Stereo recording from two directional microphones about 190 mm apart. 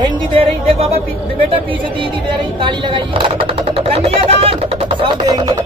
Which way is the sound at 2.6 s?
25° right (ahead or behind).